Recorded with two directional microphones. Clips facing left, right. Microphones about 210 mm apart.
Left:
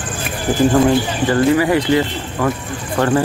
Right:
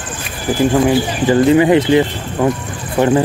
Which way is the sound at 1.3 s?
20° right (ahead or behind).